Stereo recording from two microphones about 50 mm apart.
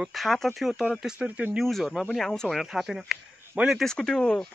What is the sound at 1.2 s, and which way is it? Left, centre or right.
Speech, right.